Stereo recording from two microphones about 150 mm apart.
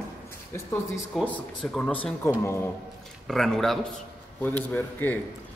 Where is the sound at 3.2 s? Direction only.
Centre (ahead or behind).